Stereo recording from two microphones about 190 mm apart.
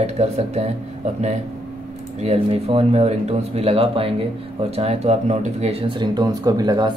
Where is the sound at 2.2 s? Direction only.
30° right (ahead or behind).